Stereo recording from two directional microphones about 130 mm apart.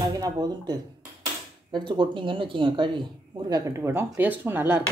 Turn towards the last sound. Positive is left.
turn(degrees=-15)  # may be behind; listen again after turning